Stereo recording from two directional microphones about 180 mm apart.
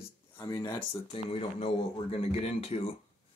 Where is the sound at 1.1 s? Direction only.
30° left (ahead or behind).